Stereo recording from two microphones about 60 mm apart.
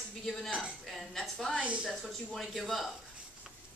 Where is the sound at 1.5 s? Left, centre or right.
Centre.